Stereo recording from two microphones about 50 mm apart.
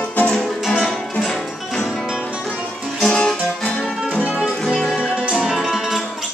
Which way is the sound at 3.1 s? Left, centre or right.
Centre.